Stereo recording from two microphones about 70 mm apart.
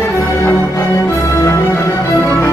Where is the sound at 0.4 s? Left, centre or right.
Left.